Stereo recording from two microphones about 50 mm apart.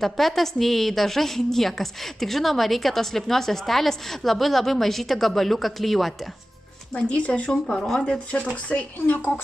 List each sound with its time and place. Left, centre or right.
0.0 s a woman's voice: centre
7.1 s speech: left
9.0 s a woman's voice: left